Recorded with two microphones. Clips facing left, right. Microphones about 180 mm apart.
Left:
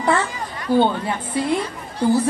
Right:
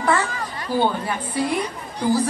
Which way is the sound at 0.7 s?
25° left (ahead or behind).